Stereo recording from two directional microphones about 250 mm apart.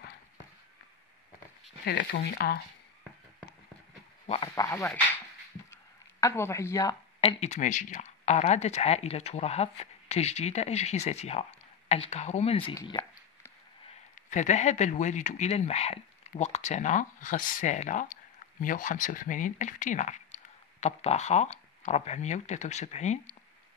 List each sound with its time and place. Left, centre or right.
1.9 s speech: left
4.3 s speech: centre
6.2 s speech: centre
11.9 s a sound: left
14.1 s speech: left